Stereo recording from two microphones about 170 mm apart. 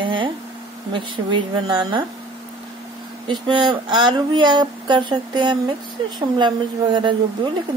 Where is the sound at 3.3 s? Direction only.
30° right (ahead or behind).